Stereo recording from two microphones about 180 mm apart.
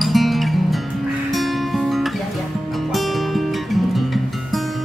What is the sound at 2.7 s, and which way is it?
Music, centre (ahead or behind).